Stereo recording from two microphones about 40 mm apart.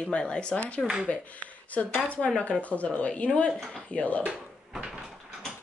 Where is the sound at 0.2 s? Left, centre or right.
Left.